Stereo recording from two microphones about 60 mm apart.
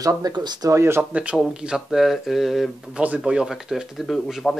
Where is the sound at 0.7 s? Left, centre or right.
Right.